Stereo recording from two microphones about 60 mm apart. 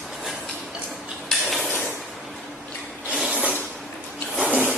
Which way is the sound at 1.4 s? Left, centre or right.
Centre.